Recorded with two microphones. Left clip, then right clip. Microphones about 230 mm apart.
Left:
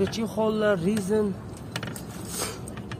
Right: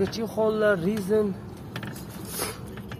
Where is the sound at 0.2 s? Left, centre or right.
Centre.